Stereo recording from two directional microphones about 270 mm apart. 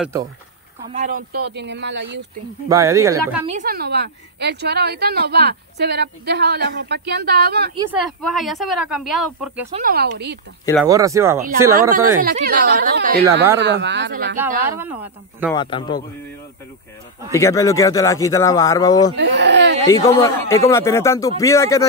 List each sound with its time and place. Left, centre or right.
0.0 s speech: centre
0.9 s a woman's voice: right
2.7 s speech: centre
3.4 s a woman's voice: right
7.9 s speech: centre
9.7 s a woman's voice: right
10.9 s speech: centre
12.2 s a woman's voice: right
14.6 s speech: centre
15.5 s speech: centre
17.3 s speech: centre
19.1 s speech: right
19.9 s speech: centre